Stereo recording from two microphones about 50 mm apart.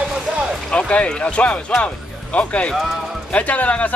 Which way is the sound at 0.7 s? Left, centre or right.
Left.